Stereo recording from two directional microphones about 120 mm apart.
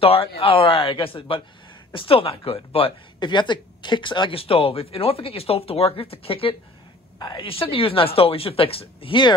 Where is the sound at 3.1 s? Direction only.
40° left (ahead or behind).